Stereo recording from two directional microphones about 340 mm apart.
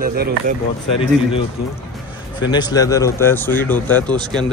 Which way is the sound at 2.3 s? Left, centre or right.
Centre.